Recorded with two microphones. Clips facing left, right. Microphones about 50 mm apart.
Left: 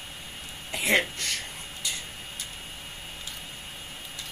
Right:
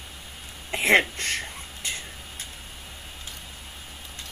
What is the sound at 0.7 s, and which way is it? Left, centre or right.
Speech, right.